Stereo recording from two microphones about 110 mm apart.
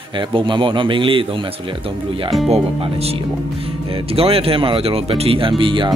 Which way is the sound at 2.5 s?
65° right (ahead or behind).